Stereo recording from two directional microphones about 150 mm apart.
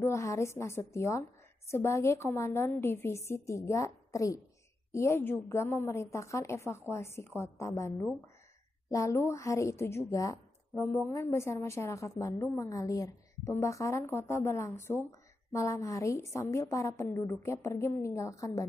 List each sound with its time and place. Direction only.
0.0 s a woman's voice: 20° left (ahead or behind)